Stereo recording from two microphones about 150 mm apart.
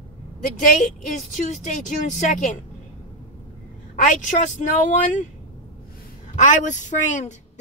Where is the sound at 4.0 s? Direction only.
55° left (ahead or behind).